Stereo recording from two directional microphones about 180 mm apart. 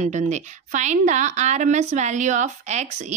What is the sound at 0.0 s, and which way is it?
A woman's voice, 40° right (ahead or behind).